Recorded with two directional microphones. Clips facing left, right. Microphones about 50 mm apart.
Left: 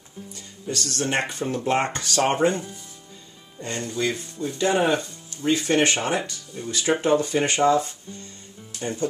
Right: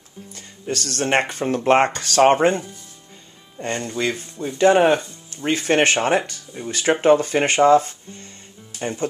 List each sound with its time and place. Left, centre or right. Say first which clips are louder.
0.3 s speech: right 4 dB; right
2.0 s speech: right 6 dB; right
3.5 s speech: right 4 dB; right